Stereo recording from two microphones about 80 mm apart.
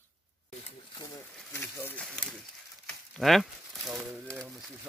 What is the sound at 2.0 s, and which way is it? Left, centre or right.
Speech, centre.